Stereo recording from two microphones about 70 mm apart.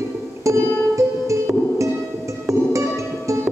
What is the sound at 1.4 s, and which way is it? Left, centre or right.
Music, right.